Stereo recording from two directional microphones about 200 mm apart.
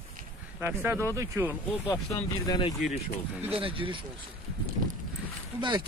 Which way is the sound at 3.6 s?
25° right (ahead or behind).